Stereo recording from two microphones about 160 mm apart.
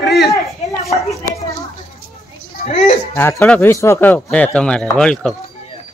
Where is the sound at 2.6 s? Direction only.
40° left (ahead or behind).